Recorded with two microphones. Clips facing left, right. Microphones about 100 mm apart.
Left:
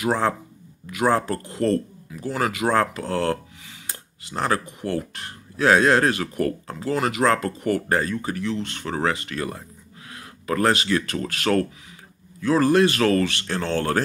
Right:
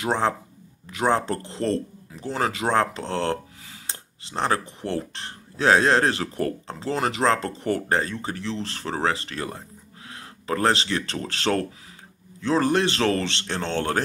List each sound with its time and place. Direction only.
0.0 s speech: 25° right (ahead or behind)